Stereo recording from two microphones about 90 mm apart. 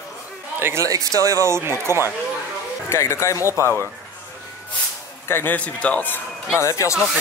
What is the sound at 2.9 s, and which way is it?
Speech, 30° left (ahead or behind).